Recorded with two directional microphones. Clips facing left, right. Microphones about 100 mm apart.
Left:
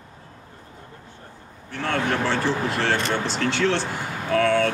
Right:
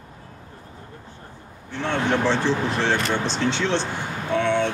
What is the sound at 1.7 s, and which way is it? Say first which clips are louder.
Speech: right 1 dB; 20° right (ahead or behind).